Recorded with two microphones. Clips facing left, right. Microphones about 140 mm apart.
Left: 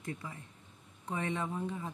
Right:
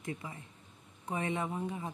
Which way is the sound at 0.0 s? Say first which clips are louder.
Right 1 dB; 20° right (ahead or behind).